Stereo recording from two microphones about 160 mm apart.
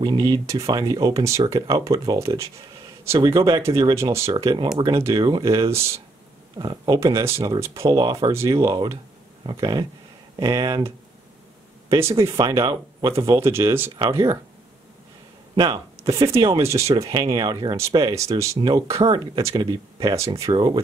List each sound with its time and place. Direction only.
0.0 s speech: 25° right (ahead or behind)
5.7 s speech: 15° right (ahead or behind)
11.9 s speech: 20° right (ahead or behind)
12.3 s speech: 30° right (ahead or behind)
13.1 s speech: 15° right (ahead or behind)
15.5 s speech: 25° right (ahead or behind)